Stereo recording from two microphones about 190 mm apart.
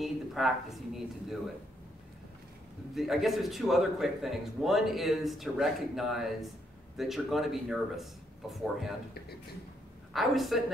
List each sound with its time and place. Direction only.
0.0 s a sound: centre (ahead or behind)
2.9 s a man's voice: centre (ahead or behind)
10.1 s a man's voice: centre (ahead or behind)